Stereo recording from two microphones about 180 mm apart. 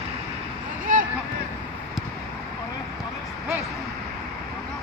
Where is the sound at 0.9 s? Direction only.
45° right (ahead or behind).